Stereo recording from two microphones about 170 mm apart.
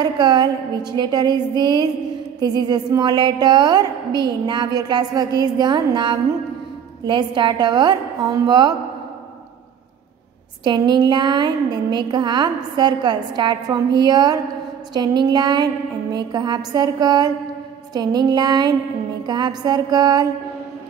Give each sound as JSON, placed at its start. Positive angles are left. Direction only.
{"t": 0.0, "sound": "a woman's voice", "side_deg": -25}
{"t": 10.6, "sound": "a woman's voice", "side_deg": -25}